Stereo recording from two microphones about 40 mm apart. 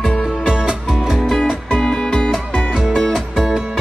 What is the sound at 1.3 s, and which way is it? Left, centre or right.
Music, centre.